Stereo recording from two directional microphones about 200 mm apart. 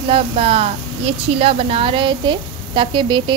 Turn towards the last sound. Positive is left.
turn(degrees=-25)  # may be behind; listen again after turning